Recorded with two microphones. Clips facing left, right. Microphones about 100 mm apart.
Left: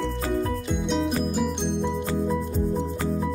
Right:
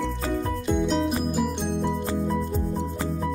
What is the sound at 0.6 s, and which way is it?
Music, centre (ahead or behind).